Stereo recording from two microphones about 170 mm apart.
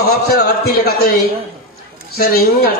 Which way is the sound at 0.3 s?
65° left (ahead or behind).